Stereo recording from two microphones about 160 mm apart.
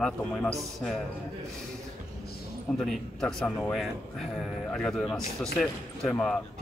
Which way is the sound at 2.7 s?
Centre (ahead or behind).